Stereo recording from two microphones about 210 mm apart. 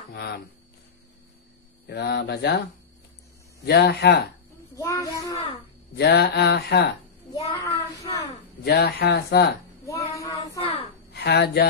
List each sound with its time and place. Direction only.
0.1 s music: 50° left (ahead or behind)
1.9 s speech: 50° left (ahead or behind)
3.6 s speech: 50° left (ahead or behind)
4.7 s a child's voice: 15° left (ahead or behind)
5.9 s speech: 50° left (ahead or behind)
7.7 s a sound: 15° left (ahead or behind)
8.6 s speech: 50° left (ahead or behind)
9.8 s a sound: 15° left (ahead or behind)
10.6 s a sound: 30° left (ahead or behind)
11.1 s speech: 50° left (ahead or behind)